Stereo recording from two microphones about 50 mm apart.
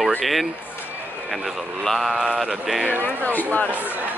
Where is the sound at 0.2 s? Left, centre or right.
Centre.